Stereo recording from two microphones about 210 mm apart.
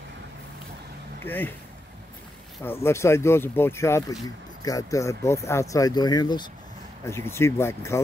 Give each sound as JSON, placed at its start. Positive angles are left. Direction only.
{"t": 1.2, "sound": "speech", "side_deg": 10}
{"t": 2.8, "sound": "speech", "side_deg": 10}